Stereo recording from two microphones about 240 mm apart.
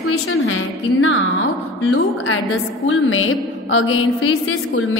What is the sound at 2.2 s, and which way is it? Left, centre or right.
A woman's voice, left.